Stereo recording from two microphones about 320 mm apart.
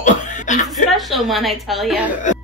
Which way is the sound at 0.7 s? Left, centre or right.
Centre.